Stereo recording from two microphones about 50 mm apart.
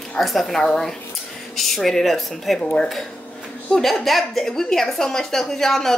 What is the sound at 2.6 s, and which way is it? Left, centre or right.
Speech, centre.